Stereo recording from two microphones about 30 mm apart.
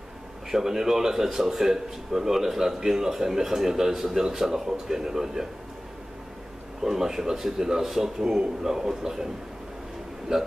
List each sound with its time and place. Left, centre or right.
0.5 s speech: centre
6.8 s speech: centre
10.3 s a man's voice: right